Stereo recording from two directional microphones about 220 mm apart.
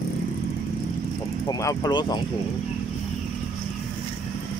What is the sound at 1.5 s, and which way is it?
Speech, 15° left (ahead or behind).